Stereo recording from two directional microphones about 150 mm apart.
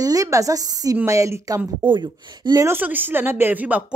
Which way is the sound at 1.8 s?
30° right (ahead or behind).